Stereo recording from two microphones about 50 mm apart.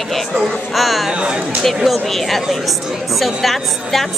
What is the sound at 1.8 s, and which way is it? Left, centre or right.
A woman's voice, centre.